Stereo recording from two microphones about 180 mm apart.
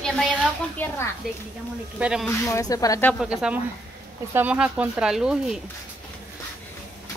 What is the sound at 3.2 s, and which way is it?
Speech, 5° right (ahead or behind).